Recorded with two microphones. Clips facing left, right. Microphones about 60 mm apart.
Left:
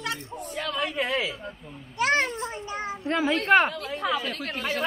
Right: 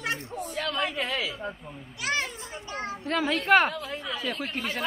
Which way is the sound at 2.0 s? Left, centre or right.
Left.